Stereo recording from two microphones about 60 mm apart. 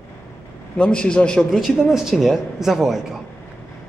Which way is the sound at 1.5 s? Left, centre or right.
Centre.